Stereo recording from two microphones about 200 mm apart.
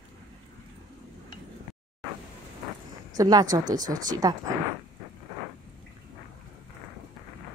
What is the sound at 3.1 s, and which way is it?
Speech, 20° right (ahead or behind).